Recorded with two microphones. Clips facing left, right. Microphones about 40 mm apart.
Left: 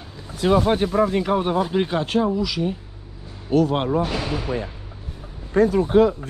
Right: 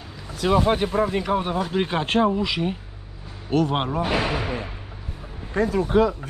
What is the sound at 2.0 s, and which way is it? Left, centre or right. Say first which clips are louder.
Speech: right 1 dB; right.